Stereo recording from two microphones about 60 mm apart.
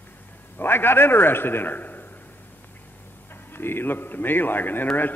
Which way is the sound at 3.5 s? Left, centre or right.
Left.